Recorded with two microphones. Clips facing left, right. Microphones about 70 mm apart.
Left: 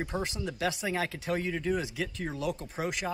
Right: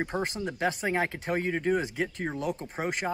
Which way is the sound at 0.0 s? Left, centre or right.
Right.